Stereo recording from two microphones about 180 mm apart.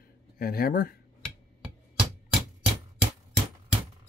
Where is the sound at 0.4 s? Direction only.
55° left (ahead or behind).